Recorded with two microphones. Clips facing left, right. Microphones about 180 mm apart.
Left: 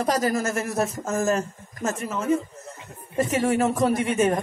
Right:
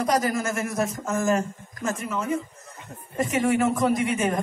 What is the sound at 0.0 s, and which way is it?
Speech, 35° left (ahead or behind).